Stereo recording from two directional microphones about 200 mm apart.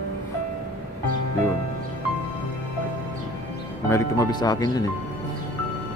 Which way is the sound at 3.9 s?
15° left (ahead or behind).